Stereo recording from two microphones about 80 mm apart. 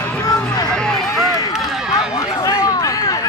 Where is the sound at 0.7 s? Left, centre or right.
Centre.